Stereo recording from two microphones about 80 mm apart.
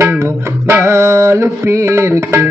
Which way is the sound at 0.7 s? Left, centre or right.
Right.